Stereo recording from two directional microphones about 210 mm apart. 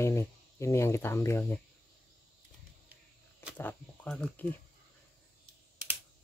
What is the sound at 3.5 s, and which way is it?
Speech, 5° left (ahead or behind).